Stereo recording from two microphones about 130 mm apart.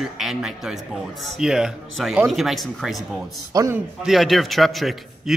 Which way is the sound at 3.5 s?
25° right (ahead or behind).